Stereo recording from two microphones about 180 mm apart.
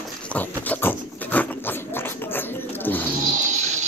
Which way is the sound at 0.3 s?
10° left (ahead or behind).